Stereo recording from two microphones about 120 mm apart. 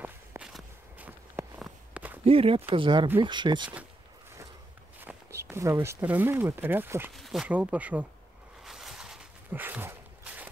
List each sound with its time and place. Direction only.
0.4 s walk: centre (ahead or behind)
0.9 s walk: 15° right (ahead or behind)
2.2 s speech: 50° right (ahead or behind)
5.0 s speech: 20° right (ahead or behind)
7.2 s speech: centre (ahead or behind)
7.4 s speech: 10° right (ahead or behind)
8.6 s walk: 5° right (ahead or behind)